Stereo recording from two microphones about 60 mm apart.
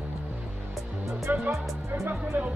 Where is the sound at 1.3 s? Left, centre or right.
Right.